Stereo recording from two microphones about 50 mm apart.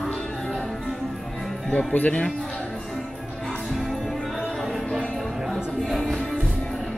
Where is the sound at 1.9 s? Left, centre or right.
Left.